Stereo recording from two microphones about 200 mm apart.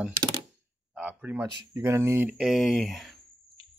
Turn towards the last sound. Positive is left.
turn(degrees=0)  # may be behind; listen again after turning